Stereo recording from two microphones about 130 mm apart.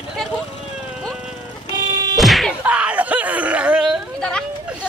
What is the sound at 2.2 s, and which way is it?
Whack, centre (ahead or behind).